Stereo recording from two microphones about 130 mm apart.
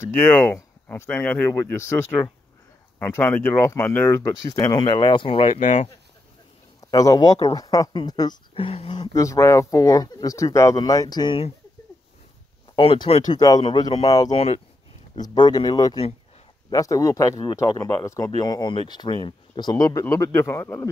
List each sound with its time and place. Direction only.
0.3 s speech: 15° left (ahead or behind)
4.8 s speech: 40° left (ahead or behind)
5.6 s speech: 65° left (ahead or behind)
6.8 s a man's voice: 25° left (ahead or behind)
8.5 s speech: 45° left (ahead or behind)
9.1 s speech: 25° left (ahead or behind)
12.7 s speech: 35° left (ahead or behind)
14.3 s speech: 55° left (ahead or behind)
15.1 s speech: 30° left (ahead or behind)